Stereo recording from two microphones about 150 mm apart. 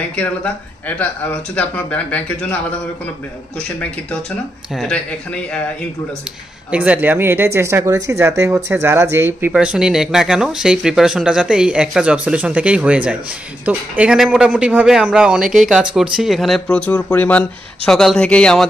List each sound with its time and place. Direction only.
0.1 s speech: 10° left (ahead or behind)
4.7 s speech: 5° left (ahead or behind)
6.7 s a man's voice: 10° right (ahead or behind)